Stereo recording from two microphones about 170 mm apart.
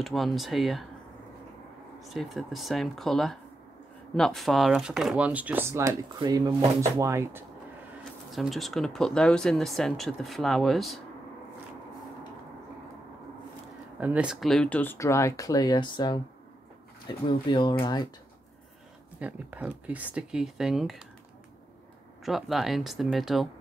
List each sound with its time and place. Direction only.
0.0 s speech: centre (ahead or behind)
2.0 s speech: centre (ahead or behind); by 7.4 s 15° right (ahead or behind)
8.3 s speech: centre (ahead or behind)
13.9 s speech: 10° right (ahead or behind); by 16.2 s 25° left (ahead or behind)
17.3 s speech: 30° left (ahead or behind)
19.1 s speech: 10° right (ahead or behind)
22.2 s speech: centre (ahead or behind)